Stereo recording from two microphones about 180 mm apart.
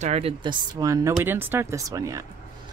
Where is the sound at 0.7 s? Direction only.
20° right (ahead or behind).